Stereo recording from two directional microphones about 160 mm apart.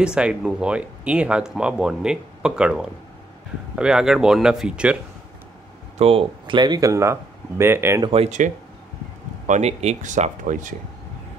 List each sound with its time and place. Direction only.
0.0 s speech: 5° right (ahead or behind)
5.9 s speech: 35° right (ahead or behind); by 8.0 s 15° right (ahead or behind)
8.0 s speech: 40° right (ahead or behind)
9.5 s speech: 40° right (ahead or behind)